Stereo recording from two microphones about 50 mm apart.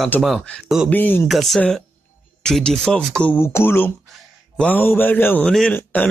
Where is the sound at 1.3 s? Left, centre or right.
Centre.